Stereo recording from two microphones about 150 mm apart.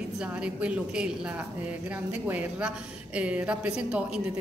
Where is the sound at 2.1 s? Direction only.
10° right (ahead or behind).